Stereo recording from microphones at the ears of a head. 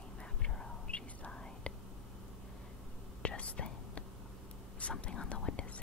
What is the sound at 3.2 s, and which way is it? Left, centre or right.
Whispering, left.